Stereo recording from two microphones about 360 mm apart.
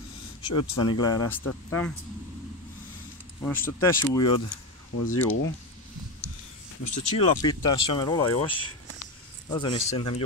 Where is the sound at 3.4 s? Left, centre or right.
Centre.